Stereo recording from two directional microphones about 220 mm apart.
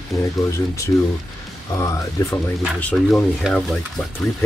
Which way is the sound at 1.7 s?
15° left (ahead or behind).